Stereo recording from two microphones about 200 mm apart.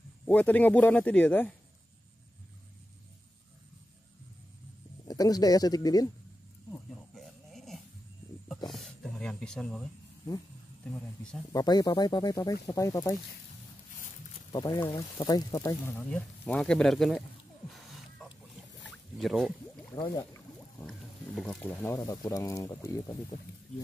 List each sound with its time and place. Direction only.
0.2 s speech: 5° left (ahead or behind)
5.0 s speech: 20° left (ahead or behind)
6.7 s insect: centre (ahead or behind)
8.6 s speech: centre (ahead or behind)
11.5 s speech: 20° left (ahead or behind)
14.5 s speech: 20° left (ahead or behind); by 17.2 s centre (ahead or behind)
17.7 s a sound: centre (ahead or behind)
18.9 s boat: centre (ahead or behind)
20.0 s speech: 20° left (ahead or behind)
21.4 s speech: 5° left (ahead or behind)
21.8 s speech: 15° left (ahead or behind)